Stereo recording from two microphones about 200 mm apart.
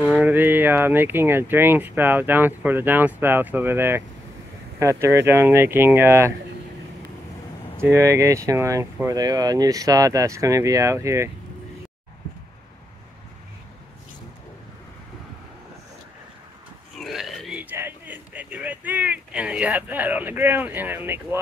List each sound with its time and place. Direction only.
0.1 s speech: 10° right (ahead or behind)
7.8 s speech: 10° right (ahead or behind)
17.0 s a sound: centre (ahead or behind)